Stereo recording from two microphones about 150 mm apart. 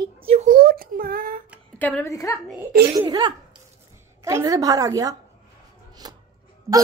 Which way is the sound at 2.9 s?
25° right (ahead or behind).